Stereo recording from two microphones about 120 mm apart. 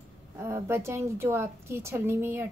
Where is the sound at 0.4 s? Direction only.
20° right (ahead or behind).